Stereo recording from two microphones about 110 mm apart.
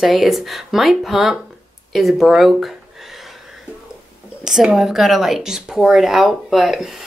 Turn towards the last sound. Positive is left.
turn(degrees=-5)  # may be behind; listen again after turning